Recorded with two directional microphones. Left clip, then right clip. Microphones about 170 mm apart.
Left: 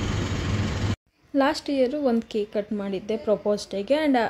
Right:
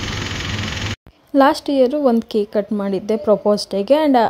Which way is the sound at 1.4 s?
45° right (ahead or behind).